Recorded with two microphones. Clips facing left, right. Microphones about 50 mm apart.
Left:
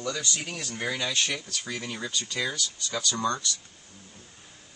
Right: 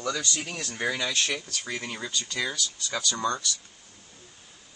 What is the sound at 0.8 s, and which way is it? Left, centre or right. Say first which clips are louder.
Speech: right 1 dB; centre.